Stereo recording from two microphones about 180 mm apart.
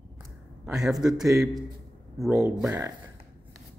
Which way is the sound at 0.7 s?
5° right (ahead or behind).